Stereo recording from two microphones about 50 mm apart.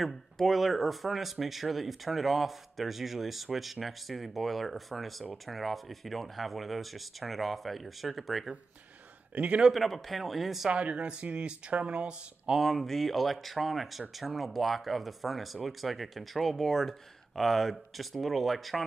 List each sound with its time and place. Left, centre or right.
0.0 s speech: centre
9.3 s a man's voice: right
9.7 s speech: centre
10.7 s speech: right
12.4 s speech: centre